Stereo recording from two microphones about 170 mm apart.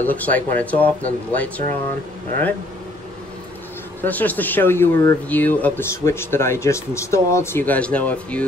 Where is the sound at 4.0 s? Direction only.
10° left (ahead or behind).